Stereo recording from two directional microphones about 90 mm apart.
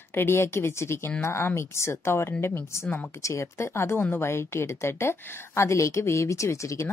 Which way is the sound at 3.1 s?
35° left (ahead or behind).